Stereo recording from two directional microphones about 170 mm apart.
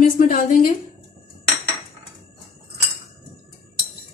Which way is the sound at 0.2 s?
50° left (ahead or behind).